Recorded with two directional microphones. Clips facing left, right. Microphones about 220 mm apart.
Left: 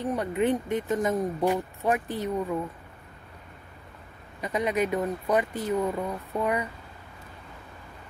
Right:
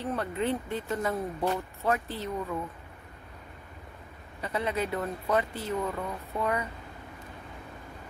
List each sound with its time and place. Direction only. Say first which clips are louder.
0.0 s speech: left 4 dB; 15° left (ahead or behind)
4.4 s speech: left 4 dB; 15° left (ahead or behind)